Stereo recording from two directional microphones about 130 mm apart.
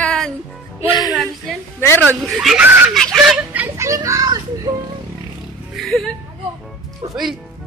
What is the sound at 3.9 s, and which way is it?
Speech, 25° right (ahead or behind).